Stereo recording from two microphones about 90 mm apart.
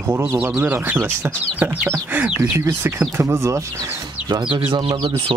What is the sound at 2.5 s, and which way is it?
Speech, 30° right (ahead or behind).